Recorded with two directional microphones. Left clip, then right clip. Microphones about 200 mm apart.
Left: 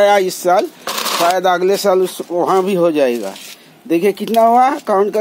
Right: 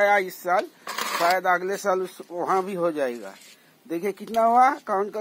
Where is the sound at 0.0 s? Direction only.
15° left (ahead or behind).